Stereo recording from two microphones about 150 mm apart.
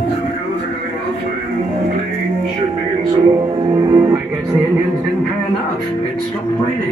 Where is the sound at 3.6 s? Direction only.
30° right (ahead or behind).